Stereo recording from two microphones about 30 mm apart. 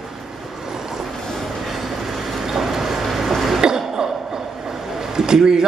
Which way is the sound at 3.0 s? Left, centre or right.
Centre.